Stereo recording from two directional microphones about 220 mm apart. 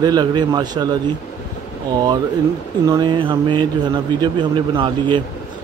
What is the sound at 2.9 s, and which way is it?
A man's voice, 20° right (ahead or behind).